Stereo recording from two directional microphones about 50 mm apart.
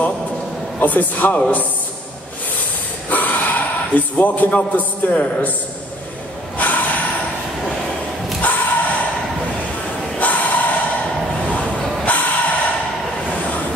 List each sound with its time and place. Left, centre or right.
0.7 s a man's voice: left
3.1 s gasp: left
4.7 s a man's voice: left
6.6 s snort: left
8.4 s a sound: left
10.1 s a sound: left
12.0 s music: left
13.4 s train: left